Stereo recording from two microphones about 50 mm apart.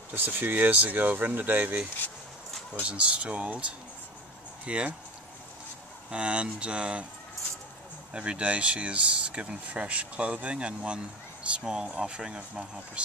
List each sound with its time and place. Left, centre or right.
0.1 s speech: right
2.8 s speech: right
4.6 s speech: right
6.0 s speech: right
8.1 s speech: right